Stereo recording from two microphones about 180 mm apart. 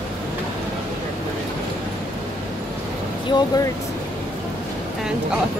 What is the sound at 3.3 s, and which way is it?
Speech, 20° left (ahead or behind).